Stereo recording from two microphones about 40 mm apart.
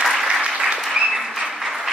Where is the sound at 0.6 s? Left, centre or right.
Centre.